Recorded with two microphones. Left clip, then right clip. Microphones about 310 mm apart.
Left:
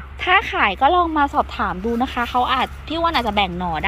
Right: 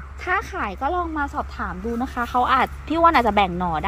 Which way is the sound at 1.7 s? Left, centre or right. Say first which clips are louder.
Left 6 dB; left.